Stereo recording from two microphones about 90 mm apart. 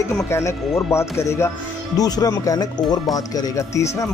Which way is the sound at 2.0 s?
45° left (ahead or behind).